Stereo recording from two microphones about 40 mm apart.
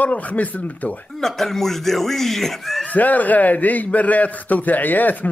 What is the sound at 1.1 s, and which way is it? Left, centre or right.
A man's voice, centre.